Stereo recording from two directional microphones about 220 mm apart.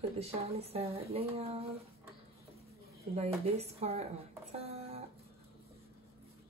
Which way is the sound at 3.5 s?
30° right (ahead or behind).